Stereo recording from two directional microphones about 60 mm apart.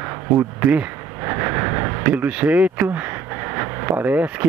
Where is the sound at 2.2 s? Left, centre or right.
Right.